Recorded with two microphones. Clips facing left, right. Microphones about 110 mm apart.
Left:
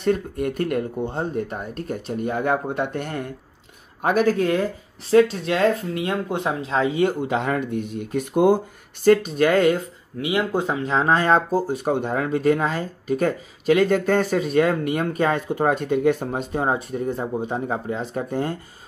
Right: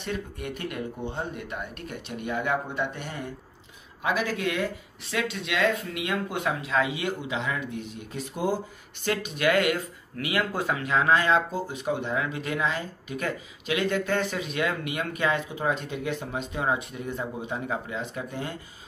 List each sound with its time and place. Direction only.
0.0 s speech: 45° left (ahead or behind)
9.0 s speech: 40° left (ahead or behind)
10.1 s speech: 20° left (ahead or behind); by 18.6 s 45° left (ahead or behind)